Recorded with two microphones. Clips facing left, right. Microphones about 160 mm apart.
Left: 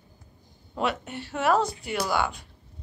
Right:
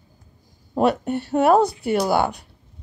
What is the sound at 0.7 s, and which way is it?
Speech, 40° right (ahead or behind).